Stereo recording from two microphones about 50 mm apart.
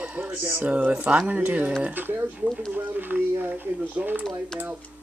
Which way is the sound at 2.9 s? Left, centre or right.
Right.